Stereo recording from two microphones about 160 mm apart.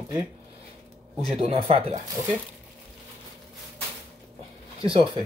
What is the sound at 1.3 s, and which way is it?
Speech, 40° right (ahead or behind).